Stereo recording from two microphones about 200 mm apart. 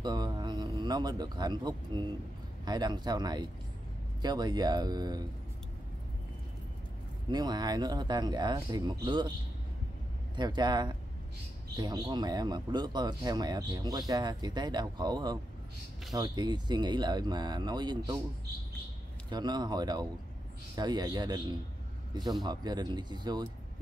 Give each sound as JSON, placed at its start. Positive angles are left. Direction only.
{"t": 0.0, "sound": "a man's voice", "side_deg": -20}
{"t": 7.2, "sound": "speech", "side_deg": -20}
{"t": 10.3, "sound": "speech", "side_deg": -20}
{"t": 19.3, "sound": "speech", "side_deg": -20}